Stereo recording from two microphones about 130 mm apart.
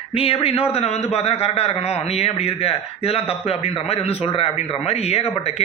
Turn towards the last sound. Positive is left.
turn(degrees=55)  # may be behind; listen again after turning